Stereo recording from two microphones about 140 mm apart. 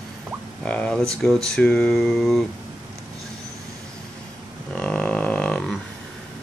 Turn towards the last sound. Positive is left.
turn(degrees=5)  # may be behind; listen again after turning